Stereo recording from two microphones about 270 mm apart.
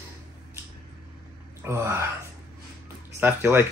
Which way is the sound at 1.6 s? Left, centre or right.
Centre.